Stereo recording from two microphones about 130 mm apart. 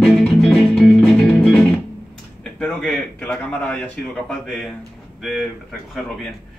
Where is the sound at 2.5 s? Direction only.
10° left (ahead or behind).